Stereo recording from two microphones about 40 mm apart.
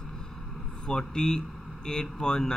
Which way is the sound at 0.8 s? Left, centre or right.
Centre.